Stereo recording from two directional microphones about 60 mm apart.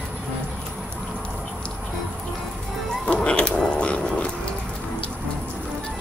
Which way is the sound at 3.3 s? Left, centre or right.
Centre.